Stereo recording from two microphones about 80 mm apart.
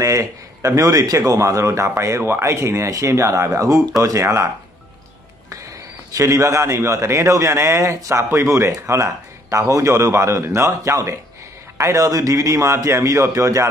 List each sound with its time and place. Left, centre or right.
0.0 s a man's voice: right
6.1 s a man's voice: right